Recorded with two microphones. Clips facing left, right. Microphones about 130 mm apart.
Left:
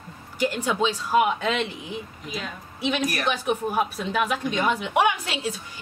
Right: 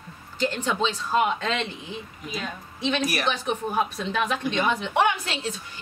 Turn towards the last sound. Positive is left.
turn(degrees=10)  # may be behind; listen again after turning